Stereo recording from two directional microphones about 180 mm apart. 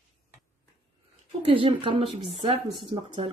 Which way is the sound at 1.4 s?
30° right (ahead or behind).